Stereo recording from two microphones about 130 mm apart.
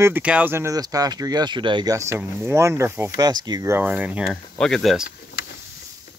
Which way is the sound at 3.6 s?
15° right (ahead or behind).